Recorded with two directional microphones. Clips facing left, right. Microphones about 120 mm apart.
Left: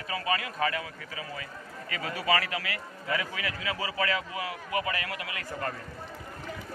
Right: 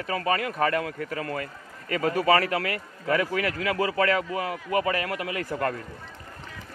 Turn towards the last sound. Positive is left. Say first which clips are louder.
# right 7 dB
turn(degrees=-65)  # may be behind; listen again after turning